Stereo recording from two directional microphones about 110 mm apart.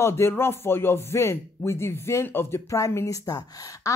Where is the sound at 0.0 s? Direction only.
25° left (ahead or behind).